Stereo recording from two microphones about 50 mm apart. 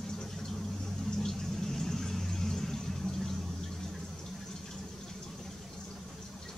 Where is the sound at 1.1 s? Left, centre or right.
Centre.